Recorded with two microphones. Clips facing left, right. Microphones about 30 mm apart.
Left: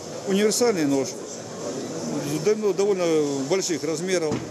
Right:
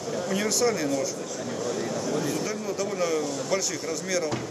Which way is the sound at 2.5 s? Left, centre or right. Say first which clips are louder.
Left 9 dB; left.